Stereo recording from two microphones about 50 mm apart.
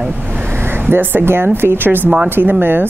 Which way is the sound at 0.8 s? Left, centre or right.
Right.